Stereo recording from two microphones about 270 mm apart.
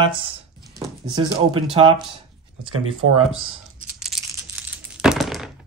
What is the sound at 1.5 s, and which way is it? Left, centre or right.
Speech, centre.